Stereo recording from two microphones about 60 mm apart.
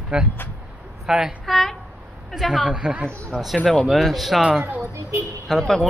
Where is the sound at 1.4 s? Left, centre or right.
Centre.